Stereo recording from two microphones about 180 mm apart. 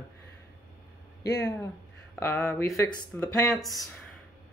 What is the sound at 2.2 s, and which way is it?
Speech, 10° left (ahead or behind).